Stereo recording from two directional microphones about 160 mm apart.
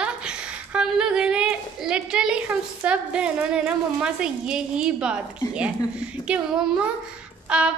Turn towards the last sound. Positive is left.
turn(degrees=-5)  # may be behind; listen again after turning